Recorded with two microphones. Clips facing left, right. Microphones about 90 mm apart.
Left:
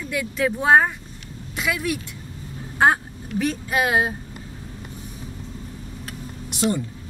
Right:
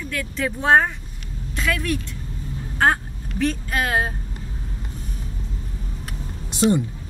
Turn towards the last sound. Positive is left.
turn(degrees=-30)  # may be behind; listen again after turning